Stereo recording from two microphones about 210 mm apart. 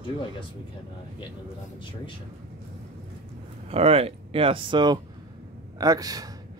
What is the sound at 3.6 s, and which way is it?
A man's voice, 30° right (ahead or behind).